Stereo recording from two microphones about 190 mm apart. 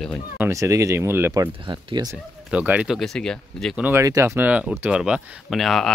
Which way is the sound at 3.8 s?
15° right (ahead or behind).